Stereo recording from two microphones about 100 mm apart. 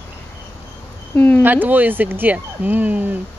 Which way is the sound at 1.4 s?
20° right (ahead or behind).